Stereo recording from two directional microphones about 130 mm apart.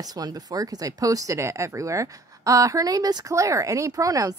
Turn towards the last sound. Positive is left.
turn(degrees=-25)  # may be behind; listen again after turning